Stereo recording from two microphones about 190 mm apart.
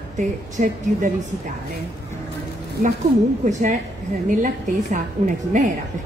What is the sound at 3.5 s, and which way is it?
A woman's voice, 40° right (ahead or behind).